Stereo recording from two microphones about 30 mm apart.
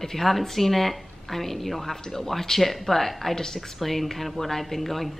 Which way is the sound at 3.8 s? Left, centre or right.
Centre.